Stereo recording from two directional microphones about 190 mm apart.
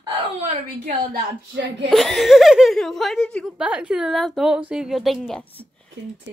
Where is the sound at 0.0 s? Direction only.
35° right (ahead or behind).